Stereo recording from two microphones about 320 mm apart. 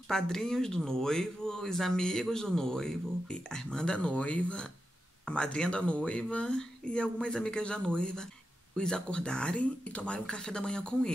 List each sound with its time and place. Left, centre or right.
0.1 s speech: centre